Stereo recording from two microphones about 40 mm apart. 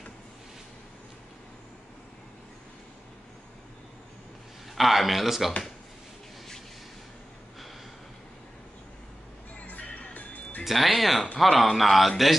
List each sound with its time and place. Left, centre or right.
4.7 s a man's voice: centre
9.7 s music: left
10.6 s a man's voice: centre